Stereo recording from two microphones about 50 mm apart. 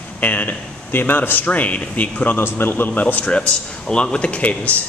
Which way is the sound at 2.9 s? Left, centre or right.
Left.